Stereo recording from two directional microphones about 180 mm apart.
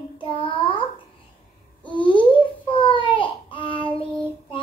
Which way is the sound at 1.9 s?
25° left (ahead or behind).